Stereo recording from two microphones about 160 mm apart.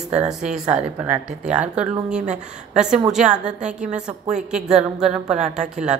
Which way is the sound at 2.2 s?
45° right (ahead or behind).